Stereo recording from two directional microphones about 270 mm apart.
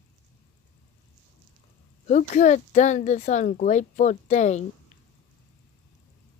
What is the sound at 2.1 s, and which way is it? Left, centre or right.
Speech, left.